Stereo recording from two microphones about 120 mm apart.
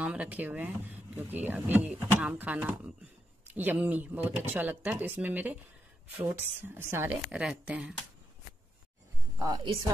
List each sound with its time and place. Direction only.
0.0 s speech: 10° right (ahead or behind)
7.2 s speech: 10° right (ahead or behind)
9.4 s a woman's voice: 40° right (ahead or behind)